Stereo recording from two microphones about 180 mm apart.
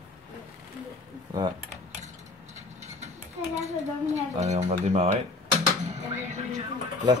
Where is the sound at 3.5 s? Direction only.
40° right (ahead or behind).